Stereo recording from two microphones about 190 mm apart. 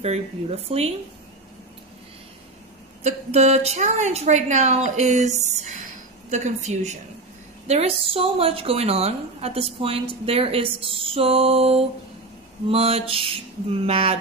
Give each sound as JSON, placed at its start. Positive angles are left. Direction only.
{"t": 0.0, "sound": "a woman's voice", "side_deg": -35}
{"t": 3.0, "sound": "a woman's voice", "side_deg": -35}